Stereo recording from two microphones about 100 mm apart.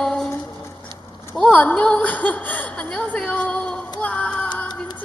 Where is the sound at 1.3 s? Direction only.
10° left (ahead or behind).